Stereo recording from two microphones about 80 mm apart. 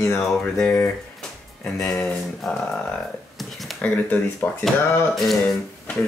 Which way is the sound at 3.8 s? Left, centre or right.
Centre.